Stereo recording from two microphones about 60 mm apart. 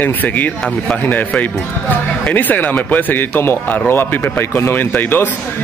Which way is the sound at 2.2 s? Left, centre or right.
Left.